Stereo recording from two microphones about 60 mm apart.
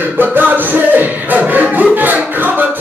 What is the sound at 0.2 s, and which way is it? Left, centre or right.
Music, right.